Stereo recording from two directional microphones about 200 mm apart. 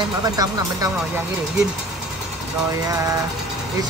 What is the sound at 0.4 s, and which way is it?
Speech, 20° right (ahead or behind).